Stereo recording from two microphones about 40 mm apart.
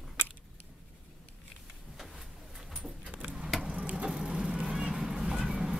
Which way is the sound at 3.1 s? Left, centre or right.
Right.